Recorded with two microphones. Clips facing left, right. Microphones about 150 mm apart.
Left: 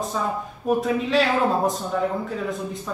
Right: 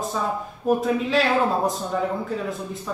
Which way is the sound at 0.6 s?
Centre (ahead or behind).